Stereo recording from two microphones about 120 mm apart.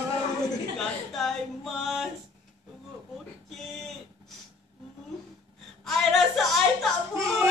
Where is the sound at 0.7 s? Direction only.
Centre (ahead or behind).